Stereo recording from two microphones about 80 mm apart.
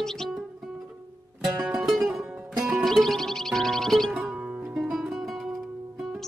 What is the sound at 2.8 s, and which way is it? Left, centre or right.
Music, centre.